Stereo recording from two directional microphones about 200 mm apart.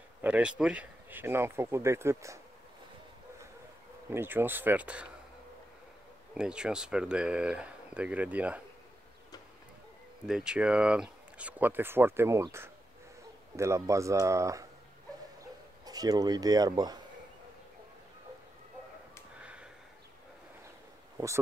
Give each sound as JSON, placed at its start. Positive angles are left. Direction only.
{"t": 0.2, "sound": "speech", "side_deg": -5}
{"t": 4.1, "sound": "speech", "side_deg": -10}
{"t": 6.3, "sound": "speech", "side_deg": -5}
{"t": 10.2, "sound": "speech", "side_deg": -5}
{"t": 15.8, "sound": "speech", "side_deg": -20}
{"t": 19.3, "sound": "a sound", "side_deg": -5}
{"t": 21.2, "sound": "speech", "side_deg": -15}